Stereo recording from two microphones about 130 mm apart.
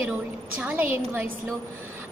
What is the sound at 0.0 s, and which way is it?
A woman's voice, 10° right (ahead or behind).